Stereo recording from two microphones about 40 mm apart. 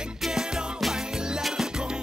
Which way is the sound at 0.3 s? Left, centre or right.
Centre.